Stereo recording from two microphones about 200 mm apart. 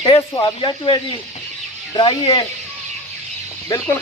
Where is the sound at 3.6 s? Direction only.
15° left (ahead or behind).